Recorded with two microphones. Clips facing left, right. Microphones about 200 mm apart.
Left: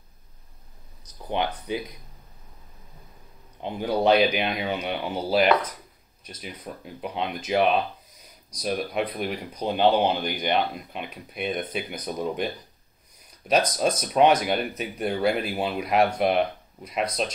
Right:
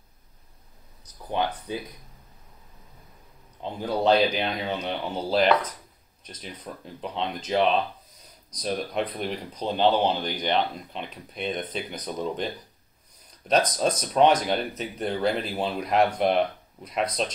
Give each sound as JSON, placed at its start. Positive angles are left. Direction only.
{"t": 1.3, "sound": "speech", "side_deg": 15}
{"t": 3.6, "sound": "speech", "side_deg": 15}
{"t": 13.5, "sound": "speech", "side_deg": 10}